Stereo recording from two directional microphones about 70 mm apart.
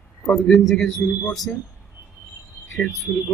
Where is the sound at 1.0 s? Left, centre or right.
Centre.